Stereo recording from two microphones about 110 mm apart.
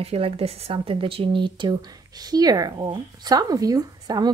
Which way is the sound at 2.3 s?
35° right (ahead or behind).